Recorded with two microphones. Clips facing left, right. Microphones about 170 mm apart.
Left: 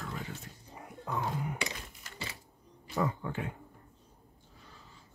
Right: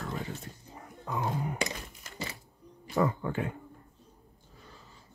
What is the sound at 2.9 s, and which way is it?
Speech, 55° right (ahead or behind).